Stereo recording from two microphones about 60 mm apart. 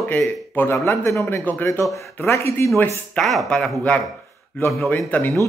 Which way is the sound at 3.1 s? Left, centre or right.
Centre.